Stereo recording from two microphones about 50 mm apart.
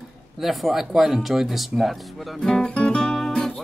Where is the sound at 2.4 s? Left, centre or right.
Centre.